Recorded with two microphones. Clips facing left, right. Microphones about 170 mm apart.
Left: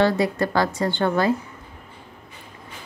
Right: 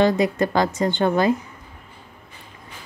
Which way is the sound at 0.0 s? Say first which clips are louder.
Right 2 dB; 20° right (ahead or behind).